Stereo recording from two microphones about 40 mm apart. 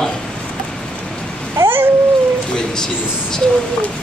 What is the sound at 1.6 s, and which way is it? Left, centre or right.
Babbling, right.